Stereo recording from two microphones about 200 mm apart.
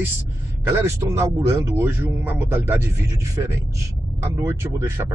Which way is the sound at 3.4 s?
20° right (ahead or behind).